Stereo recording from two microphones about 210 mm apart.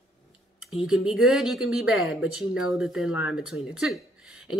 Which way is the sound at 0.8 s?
Centre (ahead or behind).